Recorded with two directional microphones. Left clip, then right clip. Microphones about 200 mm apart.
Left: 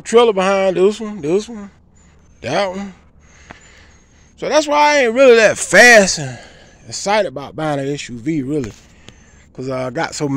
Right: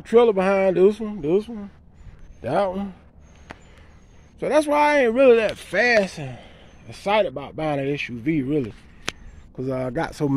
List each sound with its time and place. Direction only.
0.0 s speech: 5° left (ahead or behind)
4.4 s speech: 5° right (ahead or behind)
5.7 s a man's voice: 30° left (ahead or behind); by 8.7 s 10° left (ahead or behind)
9.6 s speech: 5° right (ahead or behind)